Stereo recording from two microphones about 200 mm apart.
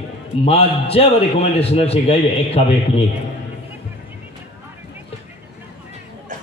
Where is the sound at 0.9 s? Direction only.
30° left (ahead or behind).